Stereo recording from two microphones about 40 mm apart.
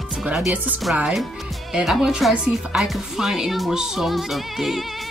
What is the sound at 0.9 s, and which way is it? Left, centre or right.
Speech, centre.